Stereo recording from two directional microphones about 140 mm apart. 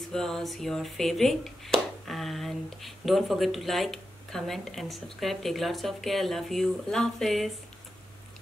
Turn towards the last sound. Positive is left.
turn(degrees=0)  # may be behind; listen again after turning